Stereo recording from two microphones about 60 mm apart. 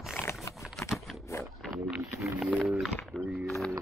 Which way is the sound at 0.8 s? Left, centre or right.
Centre.